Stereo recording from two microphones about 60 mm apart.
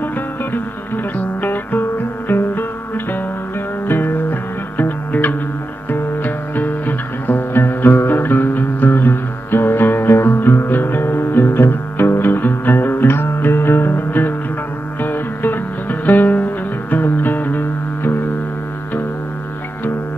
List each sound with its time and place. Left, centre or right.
0.0 s music: left
3.8 s music: left